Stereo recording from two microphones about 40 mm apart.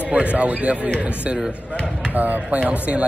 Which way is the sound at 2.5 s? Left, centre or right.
Right.